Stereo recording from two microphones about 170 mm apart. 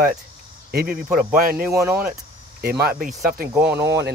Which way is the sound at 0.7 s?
60° right (ahead or behind).